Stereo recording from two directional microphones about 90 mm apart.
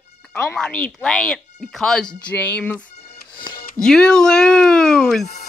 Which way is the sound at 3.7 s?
5° left (ahead or behind).